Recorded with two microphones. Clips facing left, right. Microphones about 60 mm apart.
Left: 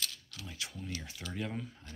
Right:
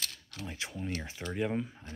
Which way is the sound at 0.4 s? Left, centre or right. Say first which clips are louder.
Right 5 dB; right.